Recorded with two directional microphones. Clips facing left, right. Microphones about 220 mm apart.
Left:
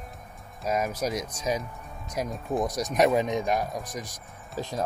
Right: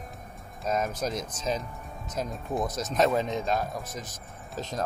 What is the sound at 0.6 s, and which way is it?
Speech, 10° left (ahead or behind).